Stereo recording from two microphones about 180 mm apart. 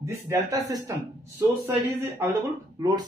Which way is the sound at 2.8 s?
20° right (ahead or behind).